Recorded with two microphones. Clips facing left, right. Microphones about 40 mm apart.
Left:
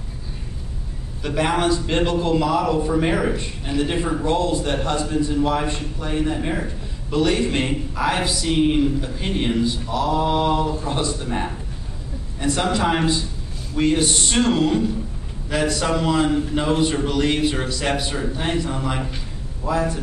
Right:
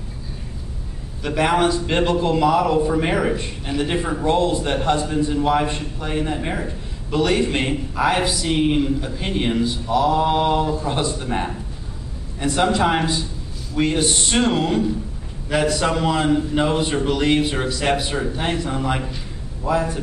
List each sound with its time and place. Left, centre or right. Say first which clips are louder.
1.2 s a man's voice: right 2 dB; centre